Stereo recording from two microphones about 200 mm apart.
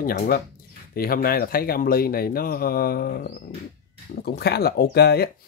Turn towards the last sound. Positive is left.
turn(degrees=50)  # may be behind; listen again after turning